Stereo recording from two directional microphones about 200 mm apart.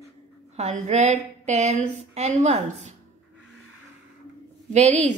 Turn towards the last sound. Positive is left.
turn(degrees=-35)  # may be behind; listen again after turning